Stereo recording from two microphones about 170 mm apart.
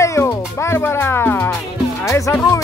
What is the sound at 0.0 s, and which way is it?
Music, 15° left (ahead or behind).